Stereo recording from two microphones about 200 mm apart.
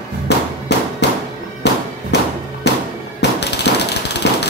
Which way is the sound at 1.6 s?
60° left (ahead or behind).